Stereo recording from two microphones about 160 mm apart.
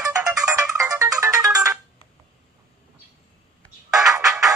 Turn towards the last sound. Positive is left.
turn(degrees=0)  # may be behind; listen again after turning